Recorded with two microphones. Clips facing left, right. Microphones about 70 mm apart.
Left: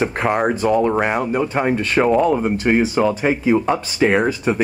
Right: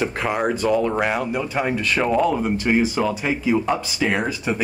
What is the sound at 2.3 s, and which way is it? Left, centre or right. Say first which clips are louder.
Speech: left 4 dB; centre.